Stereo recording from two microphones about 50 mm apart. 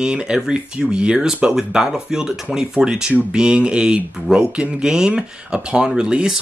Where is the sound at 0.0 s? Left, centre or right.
Centre.